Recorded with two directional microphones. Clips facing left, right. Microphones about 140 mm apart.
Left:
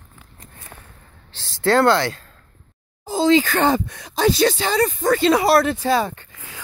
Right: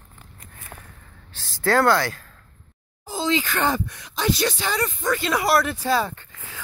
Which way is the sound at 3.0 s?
35° left (ahead or behind).